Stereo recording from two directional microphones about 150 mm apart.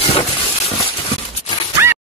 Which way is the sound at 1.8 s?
15° right (ahead or behind).